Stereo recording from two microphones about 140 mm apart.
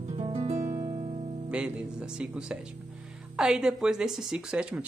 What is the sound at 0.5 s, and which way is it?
Music, 20° right (ahead or behind).